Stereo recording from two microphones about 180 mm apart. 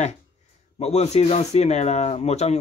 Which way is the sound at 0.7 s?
35° left (ahead or behind).